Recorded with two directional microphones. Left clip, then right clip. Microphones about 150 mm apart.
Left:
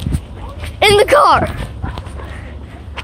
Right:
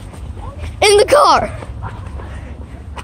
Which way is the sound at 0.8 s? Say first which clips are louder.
Even; 15° right (ahead or behind).